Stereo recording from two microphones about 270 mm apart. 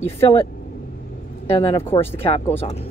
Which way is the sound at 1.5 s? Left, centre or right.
Centre.